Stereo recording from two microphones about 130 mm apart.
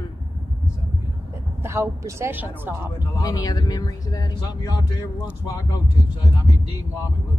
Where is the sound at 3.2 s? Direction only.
30° left (ahead or behind).